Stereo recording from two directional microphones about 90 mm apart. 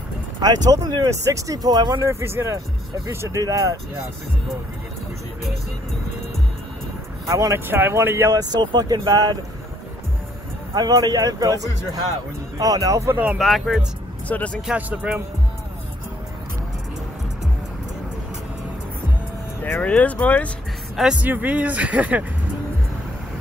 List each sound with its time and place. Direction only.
0.4 s speech: 45° right (ahead or behind)
2.0 s speech: 30° right (ahead or behind)
7.2 s speech: 35° right (ahead or behind)
7.6 s speech: 25° right (ahead or behind)
8.3 s speech: 45° right (ahead or behind)
10.7 s speech: 45° right (ahead or behind)
13.1 s speech: 15° right (ahead or behind)
13.4 s speech: centre (ahead or behind)
14.2 s speech: 15° left (ahead or behind)
14.7 s speech: 15° right (ahead or behind)
19.6 s speech: 15° left (ahead or behind)
20.9 s speech: 5° right (ahead or behind)
21.2 s speech: 20° right (ahead or behind)